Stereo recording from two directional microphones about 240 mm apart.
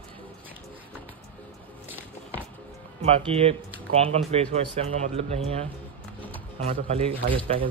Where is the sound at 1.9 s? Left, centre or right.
Centre.